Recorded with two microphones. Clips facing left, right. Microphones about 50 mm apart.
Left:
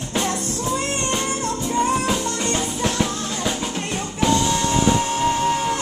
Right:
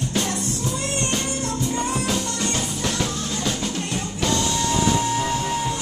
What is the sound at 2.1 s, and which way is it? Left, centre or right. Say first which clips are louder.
Drum: left 2 dB; centre.